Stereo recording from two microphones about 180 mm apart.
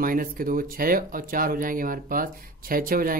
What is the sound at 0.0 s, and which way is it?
Speech, 50° right (ahead or behind).